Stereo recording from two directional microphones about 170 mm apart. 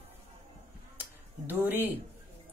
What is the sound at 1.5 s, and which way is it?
Speech, 10° right (ahead or behind).